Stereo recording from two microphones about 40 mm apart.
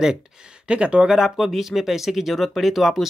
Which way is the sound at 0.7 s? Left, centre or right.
Right.